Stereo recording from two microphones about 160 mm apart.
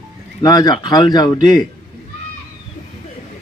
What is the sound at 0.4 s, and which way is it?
Speech, 25° left (ahead or behind).